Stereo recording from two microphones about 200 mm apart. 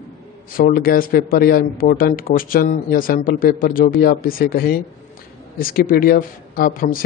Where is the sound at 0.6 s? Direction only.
50° left (ahead or behind).